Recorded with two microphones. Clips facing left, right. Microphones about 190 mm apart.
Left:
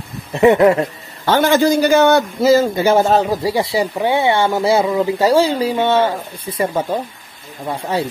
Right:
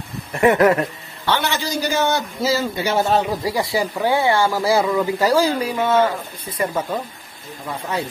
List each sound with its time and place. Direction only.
0.3 s speech: 20° left (ahead or behind)
1.2 s a man's voice: 45° left (ahead or behind)
3.4 s speech: 25° left (ahead or behind)